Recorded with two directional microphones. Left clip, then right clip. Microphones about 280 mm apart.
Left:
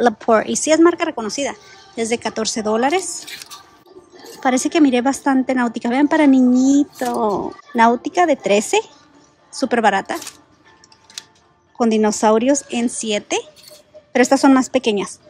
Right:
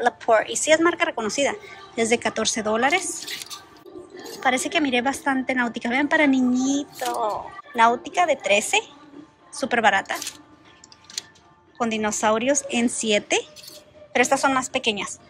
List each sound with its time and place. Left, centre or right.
0.0 s speech: left
4.4 s speech: centre
11.8 s speech: centre